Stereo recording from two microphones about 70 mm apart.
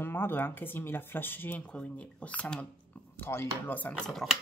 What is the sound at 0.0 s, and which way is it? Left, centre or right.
Speech, left.